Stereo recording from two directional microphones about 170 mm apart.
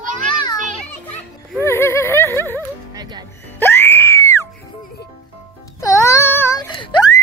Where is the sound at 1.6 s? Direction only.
15° left (ahead or behind).